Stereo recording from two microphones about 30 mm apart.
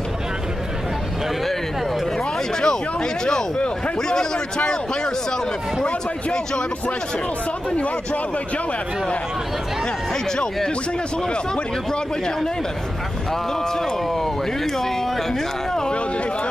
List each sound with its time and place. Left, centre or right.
2.6 s speech: left
10.3 s speech: left